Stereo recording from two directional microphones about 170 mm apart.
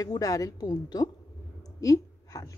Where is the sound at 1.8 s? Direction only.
20° left (ahead or behind).